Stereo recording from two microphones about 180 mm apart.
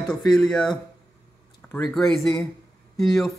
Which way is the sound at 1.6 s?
10° left (ahead or behind).